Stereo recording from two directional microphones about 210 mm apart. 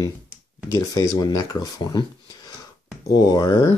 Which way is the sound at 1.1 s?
15° left (ahead or behind).